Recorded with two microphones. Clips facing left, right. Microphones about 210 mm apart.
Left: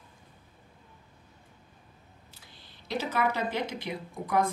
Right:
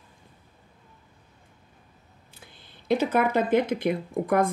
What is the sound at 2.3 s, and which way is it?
Speech, 55° right (ahead or behind).